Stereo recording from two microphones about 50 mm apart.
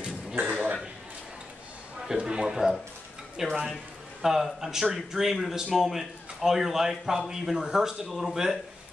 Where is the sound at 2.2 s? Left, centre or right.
Centre.